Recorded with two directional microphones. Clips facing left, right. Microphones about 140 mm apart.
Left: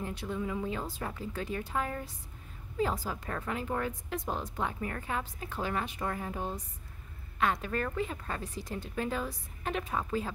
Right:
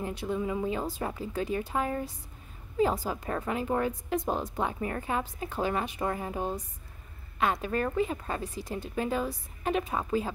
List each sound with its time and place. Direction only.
0.0 s a woman's voice: 15° right (ahead or behind)